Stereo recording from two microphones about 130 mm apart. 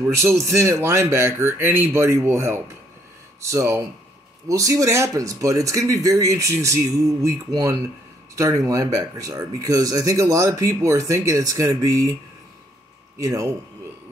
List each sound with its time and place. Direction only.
0.0 s speech: 20° right (ahead or behind)
13.2 s speech: 25° right (ahead or behind)